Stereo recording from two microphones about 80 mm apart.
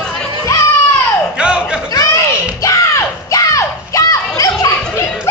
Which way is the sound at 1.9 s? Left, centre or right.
Left.